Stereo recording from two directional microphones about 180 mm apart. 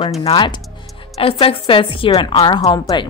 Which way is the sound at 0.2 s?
30° left (ahead or behind).